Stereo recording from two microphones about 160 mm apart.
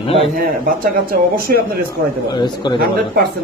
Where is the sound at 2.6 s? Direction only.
30° left (ahead or behind).